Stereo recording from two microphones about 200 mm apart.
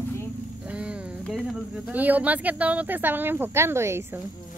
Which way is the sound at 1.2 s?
Centre (ahead or behind).